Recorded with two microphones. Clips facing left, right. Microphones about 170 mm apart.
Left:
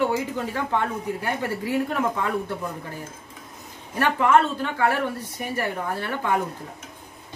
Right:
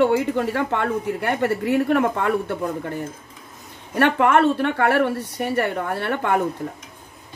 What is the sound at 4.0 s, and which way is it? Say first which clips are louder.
Speech: right 3 dB; 60° right (ahead or behind).